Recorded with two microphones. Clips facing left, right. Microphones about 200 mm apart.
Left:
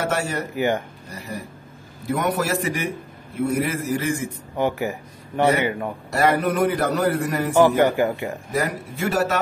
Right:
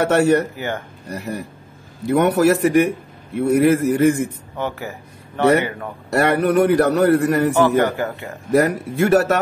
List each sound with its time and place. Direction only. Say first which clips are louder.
0.0 s a man's voice: right 9 dB; 65° right (ahead or behind)
0.6 s speech: left 4 dB; 15° left (ahead or behind)
1.0 s a man's voice: right 6 dB; 65° right (ahead or behind)
4.6 s speech: left 3 dB; 15° left (ahead or behind)
6.0 s a man's voice: right 3 dB; 70° right (ahead or behind)
7.5 s speech: even; 15° left (ahead or behind)
8.5 s a man's voice: right 11 dB; 65° right (ahead or behind)